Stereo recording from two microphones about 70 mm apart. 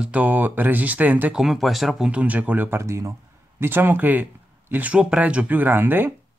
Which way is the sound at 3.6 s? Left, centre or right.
Right.